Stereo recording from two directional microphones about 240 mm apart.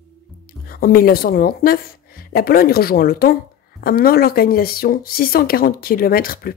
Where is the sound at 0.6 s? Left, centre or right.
Left.